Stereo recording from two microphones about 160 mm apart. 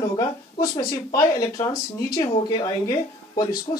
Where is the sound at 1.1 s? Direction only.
25° left (ahead or behind).